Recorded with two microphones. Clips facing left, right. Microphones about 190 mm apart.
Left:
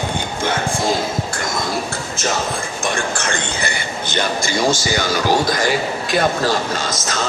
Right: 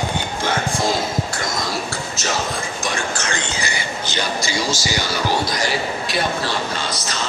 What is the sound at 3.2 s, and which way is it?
Speech, 55° left (ahead or behind).